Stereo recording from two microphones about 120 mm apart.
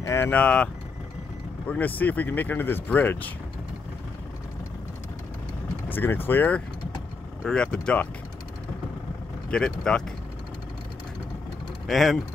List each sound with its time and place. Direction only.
0.0 s speech: 25° left (ahead or behind)
0.3 s speech: 10° left (ahead or behind)
1.7 s speech: 15° left (ahead or behind)
5.9 s speech: 15° left (ahead or behind)
9.5 s speech: 5° left (ahead or behind)
11.9 s speech: centre (ahead or behind)